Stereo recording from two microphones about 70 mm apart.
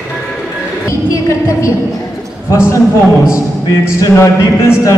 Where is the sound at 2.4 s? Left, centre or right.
Left.